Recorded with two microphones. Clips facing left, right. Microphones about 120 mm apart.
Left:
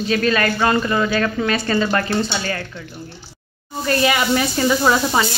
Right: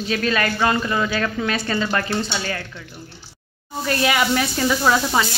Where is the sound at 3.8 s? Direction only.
5° right (ahead or behind).